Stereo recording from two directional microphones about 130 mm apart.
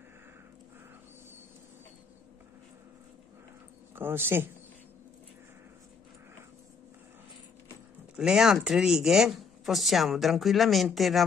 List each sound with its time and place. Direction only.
3.9 s speech: 15° right (ahead or behind)
8.2 s a woman's voice: 5° right (ahead or behind)